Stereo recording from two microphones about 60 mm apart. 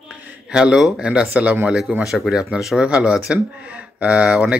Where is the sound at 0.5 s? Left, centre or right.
Centre.